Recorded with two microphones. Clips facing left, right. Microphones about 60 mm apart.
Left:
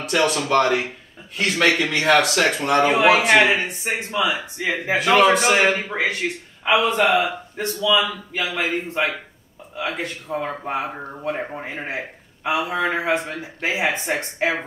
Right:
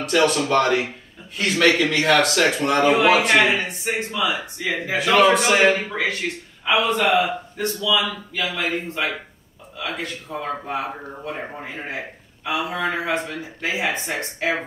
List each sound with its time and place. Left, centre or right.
0.0 s a man's voice: centre
3.3 s a man's voice: left
4.9 s a man's voice: centre
5.9 s a man's voice: left